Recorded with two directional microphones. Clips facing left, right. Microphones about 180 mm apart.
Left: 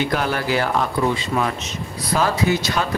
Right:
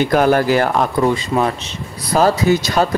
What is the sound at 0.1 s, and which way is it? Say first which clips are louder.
Speech: right 8 dB; 45° right (ahead or behind).